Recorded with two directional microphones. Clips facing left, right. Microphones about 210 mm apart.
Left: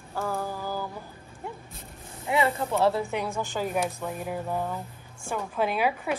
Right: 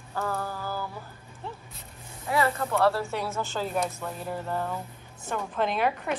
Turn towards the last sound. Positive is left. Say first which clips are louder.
# left 1 dB
turn(degrees=5)  # may be behind; listen again after turning